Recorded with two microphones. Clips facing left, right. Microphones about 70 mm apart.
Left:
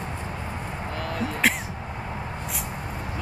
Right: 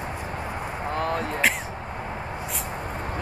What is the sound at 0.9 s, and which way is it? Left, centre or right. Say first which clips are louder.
Speech: right 3 dB; right.